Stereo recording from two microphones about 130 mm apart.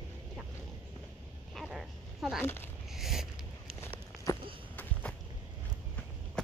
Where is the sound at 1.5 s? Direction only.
Centre (ahead or behind).